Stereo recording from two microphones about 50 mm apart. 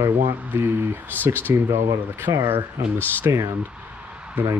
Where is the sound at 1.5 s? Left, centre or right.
Right.